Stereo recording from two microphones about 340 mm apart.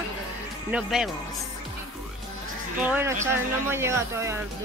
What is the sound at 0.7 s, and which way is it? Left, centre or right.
Speech, centre.